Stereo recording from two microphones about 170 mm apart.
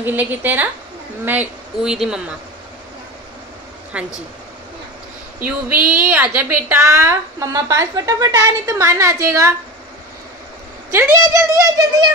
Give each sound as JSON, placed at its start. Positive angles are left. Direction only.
{"t": 0.0, "sound": "a woman's voice", "side_deg": -10}
{"t": 3.9, "sound": "a woman's voice", "side_deg": -5}
{"t": 5.4, "sound": "a woman's voice", "side_deg": -10}
{"t": 10.9, "sound": "a woman's voice", "side_deg": -15}